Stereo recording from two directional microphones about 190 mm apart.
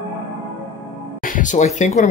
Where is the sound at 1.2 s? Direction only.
40° left (ahead or behind).